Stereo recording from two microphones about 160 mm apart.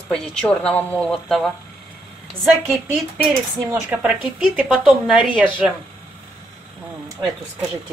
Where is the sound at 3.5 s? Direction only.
20° right (ahead or behind).